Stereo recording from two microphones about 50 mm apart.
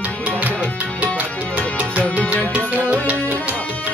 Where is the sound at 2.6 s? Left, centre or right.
Right.